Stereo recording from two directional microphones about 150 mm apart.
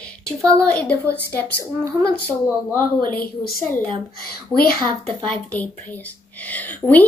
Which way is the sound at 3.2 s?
80° left.